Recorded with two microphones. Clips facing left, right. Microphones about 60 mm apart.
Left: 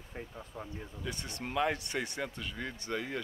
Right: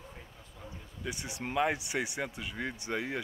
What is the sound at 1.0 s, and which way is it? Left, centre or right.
A man's voice, centre.